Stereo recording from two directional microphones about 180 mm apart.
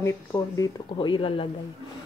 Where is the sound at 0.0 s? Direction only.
15° left (ahead or behind).